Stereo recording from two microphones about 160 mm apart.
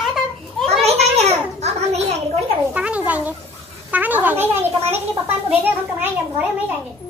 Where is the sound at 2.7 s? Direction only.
10° right (ahead or behind).